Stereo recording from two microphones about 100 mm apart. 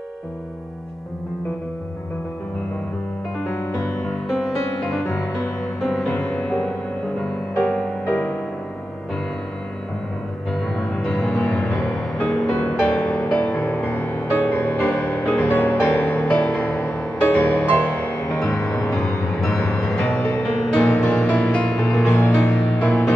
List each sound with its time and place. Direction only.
4.0 s music: centre (ahead or behind)
7.6 s music: 15° left (ahead or behind)
10.7 s music: 5° left (ahead or behind)
19.2 s music: 5° left (ahead or behind)